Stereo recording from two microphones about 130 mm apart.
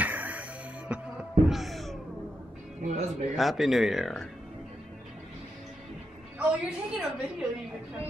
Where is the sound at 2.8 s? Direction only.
65° right (ahead or behind).